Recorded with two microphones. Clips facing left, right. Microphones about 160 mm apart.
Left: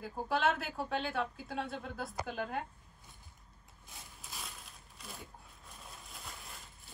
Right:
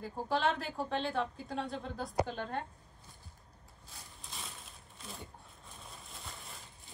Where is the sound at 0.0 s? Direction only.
5° left (ahead or behind).